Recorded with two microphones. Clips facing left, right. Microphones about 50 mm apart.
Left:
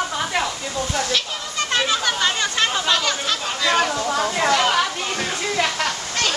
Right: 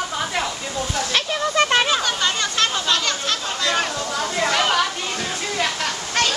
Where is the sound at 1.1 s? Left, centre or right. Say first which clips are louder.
Right 4 dB; right.